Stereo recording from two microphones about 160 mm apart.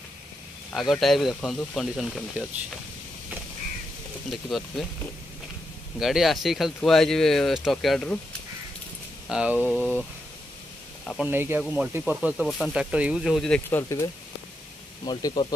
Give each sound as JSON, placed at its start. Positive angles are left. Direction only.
{"t": 0.7, "sound": "speech", "side_deg": 0}
{"t": 4.3, "sound": "speech", "side_deg": 0}
{"t": 5.9, "sound": "speech", "side_deg": 0}
{"t": 9.3, "sound": "speech", "side_deg": -10}
{"t": 11.1, "sound": "speech", "side_deg": -15}
{"t": 11.6, "sound": "speech", "side_deg": -5}
{"t": 13.7, "sound": "speech", "side_deg": 15}
{"t": 15.0, "sound": "speech", "side_deg": 25}